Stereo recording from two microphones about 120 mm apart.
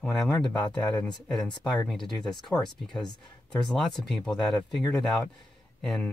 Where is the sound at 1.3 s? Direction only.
40° left (ahead or behind).